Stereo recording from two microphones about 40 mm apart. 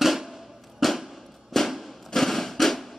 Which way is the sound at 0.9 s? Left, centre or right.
Centre.